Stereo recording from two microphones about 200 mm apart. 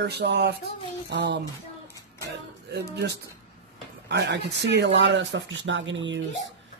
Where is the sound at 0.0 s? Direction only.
55° right (ahead or behind).